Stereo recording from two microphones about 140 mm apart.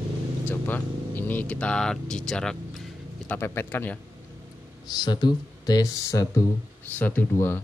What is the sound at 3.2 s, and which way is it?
Speech, 15° left (ahead or behind).